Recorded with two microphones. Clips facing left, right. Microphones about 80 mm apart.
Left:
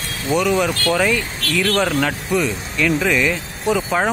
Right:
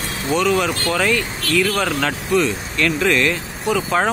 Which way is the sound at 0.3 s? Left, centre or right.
Centre.